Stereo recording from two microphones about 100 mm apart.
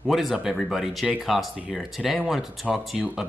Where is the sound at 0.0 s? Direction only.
Centre (ahead or behind).